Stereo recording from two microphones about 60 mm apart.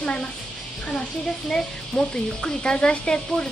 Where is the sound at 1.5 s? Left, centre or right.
Centre.